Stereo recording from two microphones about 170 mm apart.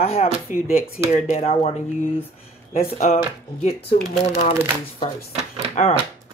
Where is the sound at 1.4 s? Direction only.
35° left (ahead or behind).